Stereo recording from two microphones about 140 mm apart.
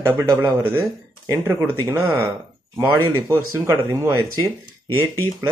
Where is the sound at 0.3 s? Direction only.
30° right (ahead or behind).